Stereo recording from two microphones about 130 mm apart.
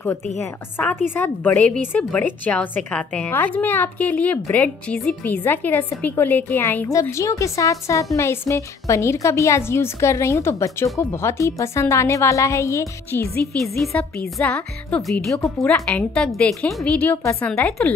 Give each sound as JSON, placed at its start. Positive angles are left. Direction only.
{"t": 0.0, "sound": "a woman's voice", "side_deg": 15}
{"t": 13.7, "sound": "a woman's voice", "side_deg": 10}